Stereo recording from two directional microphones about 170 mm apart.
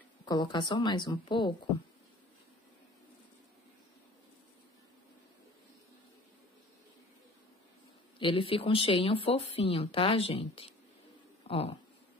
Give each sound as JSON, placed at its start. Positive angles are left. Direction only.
{"t": 0.2, "sound": "a woman's voice", "side_deg": 25}
{"t": 8.2, "sound": "speech", "side_deg": 30}